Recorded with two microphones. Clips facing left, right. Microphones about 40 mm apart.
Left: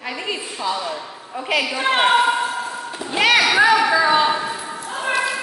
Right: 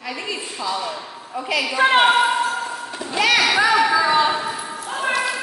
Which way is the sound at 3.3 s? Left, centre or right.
Centre.